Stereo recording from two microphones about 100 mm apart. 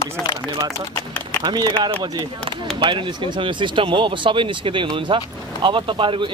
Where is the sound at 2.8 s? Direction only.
55° right (ahead or behind).